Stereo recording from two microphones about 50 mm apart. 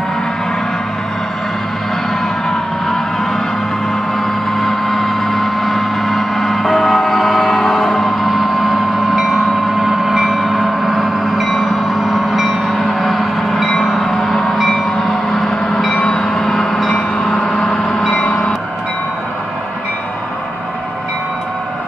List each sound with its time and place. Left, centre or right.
4.5 s vehicle: centre
13.8 s gong: centre
16.0 s train: centre